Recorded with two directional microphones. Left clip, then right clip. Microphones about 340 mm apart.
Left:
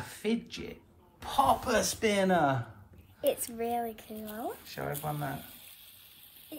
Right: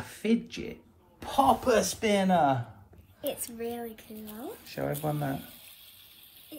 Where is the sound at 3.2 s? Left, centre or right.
Left.